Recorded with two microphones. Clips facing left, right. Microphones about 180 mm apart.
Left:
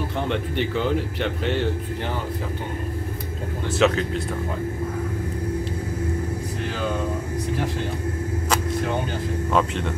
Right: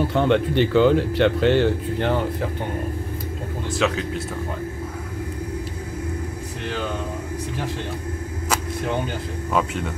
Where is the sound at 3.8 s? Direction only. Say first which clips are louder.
Left 3 dB; centre (ahead or behind).